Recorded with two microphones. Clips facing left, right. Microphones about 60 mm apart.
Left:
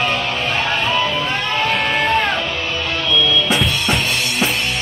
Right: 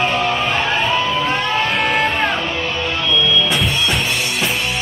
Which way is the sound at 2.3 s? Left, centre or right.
Right.